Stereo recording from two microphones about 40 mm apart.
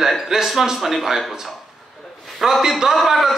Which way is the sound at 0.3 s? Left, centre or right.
Centre.